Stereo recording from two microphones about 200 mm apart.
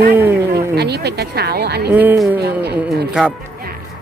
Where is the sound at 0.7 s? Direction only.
55° right (ahead or behind).